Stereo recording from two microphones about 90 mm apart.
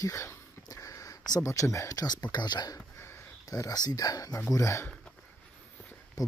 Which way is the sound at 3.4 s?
40° left (ahead or behind).